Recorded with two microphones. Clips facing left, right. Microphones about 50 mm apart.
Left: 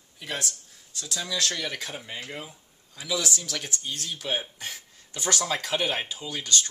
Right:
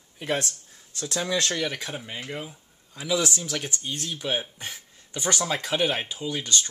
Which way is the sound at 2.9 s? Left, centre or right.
Right.